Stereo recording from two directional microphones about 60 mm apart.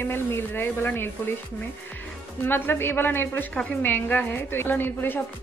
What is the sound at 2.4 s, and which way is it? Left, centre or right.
A woman's voice, left.